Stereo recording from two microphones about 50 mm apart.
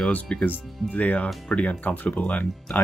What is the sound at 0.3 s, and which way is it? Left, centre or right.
Speech, left.